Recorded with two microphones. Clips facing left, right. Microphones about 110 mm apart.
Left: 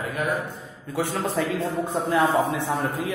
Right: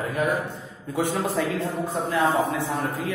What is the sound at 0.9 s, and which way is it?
Speech, 20° right (ahead or behind).